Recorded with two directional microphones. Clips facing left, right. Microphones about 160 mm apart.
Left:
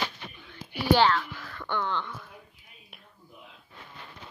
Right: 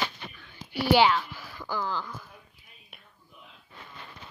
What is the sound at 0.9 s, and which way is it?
Speech, 10° right (ahead or behind).